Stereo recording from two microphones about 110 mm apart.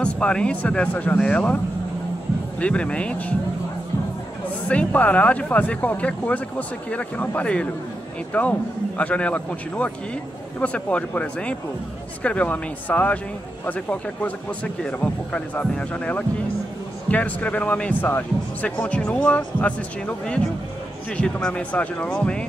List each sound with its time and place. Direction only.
0.0 s speech: 10° left (ahead or behind)
2.6 s speech: 10° left (ahead or behind)
4.6 s speech: 15° left (ahead or behind)
21.2 s speech: 10° left (ahead or behind)